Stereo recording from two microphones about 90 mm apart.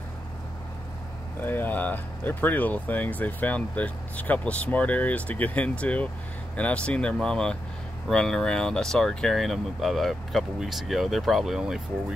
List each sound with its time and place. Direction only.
1.4 s speech: 20° left (ahead or behind); by 11.8 s 5° right (ahead or behind)